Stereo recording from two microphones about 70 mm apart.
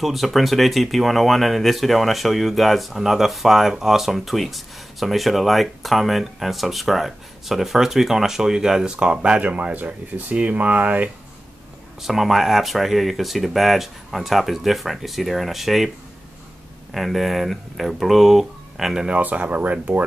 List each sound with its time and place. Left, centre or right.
0.0 s speech: centre; by 11.1 s right
12.0 s speech: centre
16.9 s speech: centre
19.1 s speech: right